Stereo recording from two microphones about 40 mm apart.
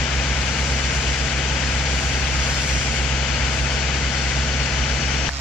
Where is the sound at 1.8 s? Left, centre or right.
Left.